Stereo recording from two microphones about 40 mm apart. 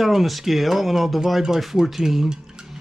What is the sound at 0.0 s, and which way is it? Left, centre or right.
Speech, centre.